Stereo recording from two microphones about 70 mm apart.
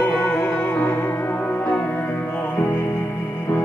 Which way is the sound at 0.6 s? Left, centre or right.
Left.